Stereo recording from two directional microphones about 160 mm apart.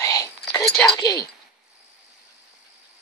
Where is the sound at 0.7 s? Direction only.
Centre (ahead or behind).